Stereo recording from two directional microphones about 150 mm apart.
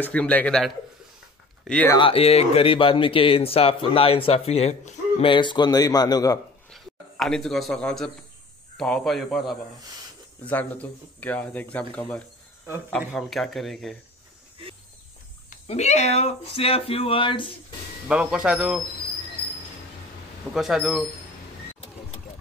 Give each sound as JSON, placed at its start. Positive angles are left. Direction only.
{"t": 0.0, "sound": "speech", "side_deg": 10}
{"t": 2.0, "sound": "speech", "side_deg": 40}
{"t": 6.7, "sound": "a sound", "side_deg": 5}
{"t": 8.7, "sound": "a man's voice", "side_deg": 5}
{"t": 15.6, "sound": "speech", "side_deg": 45}
{"t": 18.0, "sound": "a man's voice", "side_deg": -5}
{"t": 20.5, "sound": "a man's voice", "side_deg": -5}